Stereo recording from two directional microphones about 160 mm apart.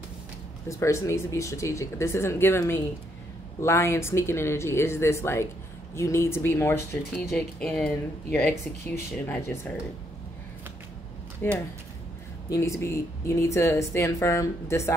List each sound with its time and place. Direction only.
0.7 s speech: 20° left (ahead or behind)
11.4 s speech: 15° left (ahead or behind)